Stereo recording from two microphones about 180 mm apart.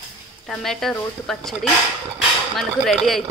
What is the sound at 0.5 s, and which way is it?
Speech, centre (ahead or behind).